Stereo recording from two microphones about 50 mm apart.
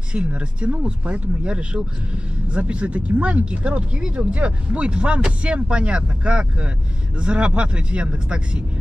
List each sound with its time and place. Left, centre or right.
0.1 s speech: right